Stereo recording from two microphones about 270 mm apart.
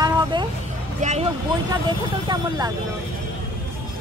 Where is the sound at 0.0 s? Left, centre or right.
Centre.